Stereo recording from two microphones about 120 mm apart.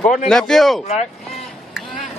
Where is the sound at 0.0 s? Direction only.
80° left.